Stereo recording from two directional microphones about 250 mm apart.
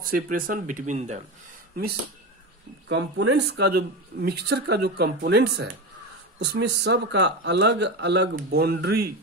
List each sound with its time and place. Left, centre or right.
0.0 s speech: right
2.9 s speech: right